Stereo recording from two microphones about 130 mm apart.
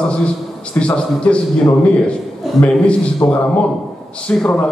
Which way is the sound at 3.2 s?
30° left (ahead or behind).